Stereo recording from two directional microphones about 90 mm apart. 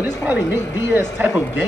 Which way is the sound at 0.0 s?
20° right (ahead or behind).